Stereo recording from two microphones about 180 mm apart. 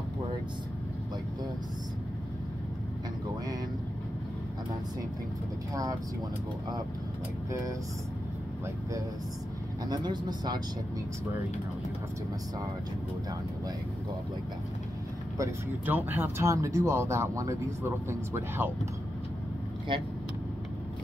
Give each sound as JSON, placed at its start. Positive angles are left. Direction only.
{"t": 9.8, "sound": "speech", "side_deg": -25}
{"t": 15.3, "sound": "speech", "side_deg": -15}
{"t": 19.9, "sound": "speech", "side_deg": -25}